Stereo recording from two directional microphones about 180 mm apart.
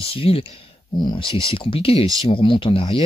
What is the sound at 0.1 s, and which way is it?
Speech, 30° left (ahead or behind).